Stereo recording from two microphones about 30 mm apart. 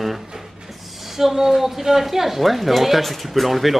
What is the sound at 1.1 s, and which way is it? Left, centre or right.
A woman's voice, centre.